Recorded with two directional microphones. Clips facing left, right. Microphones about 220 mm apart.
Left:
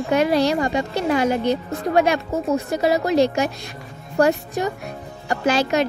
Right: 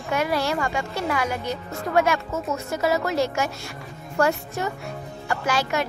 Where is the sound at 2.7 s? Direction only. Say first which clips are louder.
Left 2 dB; 15° left (ahead or behind).